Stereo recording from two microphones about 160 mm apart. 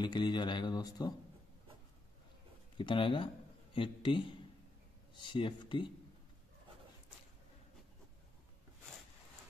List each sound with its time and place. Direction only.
0.0 s speech: 30° left (ahead or behind)
2.8 s a man's voice: 30° left (ahead or behind)